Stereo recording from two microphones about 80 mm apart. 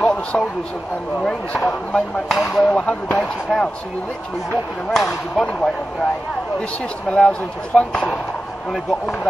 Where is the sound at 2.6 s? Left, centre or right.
Centre.